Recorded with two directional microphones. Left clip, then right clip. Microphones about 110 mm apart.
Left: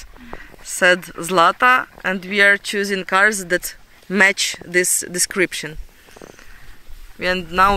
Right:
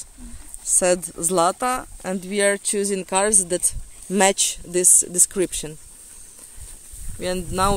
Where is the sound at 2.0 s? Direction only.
30° right (ahead or behind).